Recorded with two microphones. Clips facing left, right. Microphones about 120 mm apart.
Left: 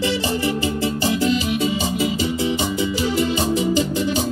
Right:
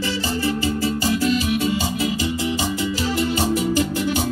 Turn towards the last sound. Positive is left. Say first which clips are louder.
# left 1 dB
turn(degrees=20)  # may be behind; listen again after turning